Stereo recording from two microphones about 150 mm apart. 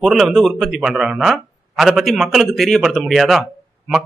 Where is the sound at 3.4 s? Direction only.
5° right (ahead or behind).